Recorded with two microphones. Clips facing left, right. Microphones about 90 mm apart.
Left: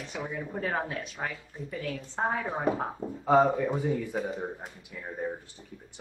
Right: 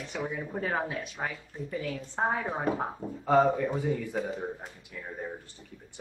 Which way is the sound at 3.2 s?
10° left (ahead or behind).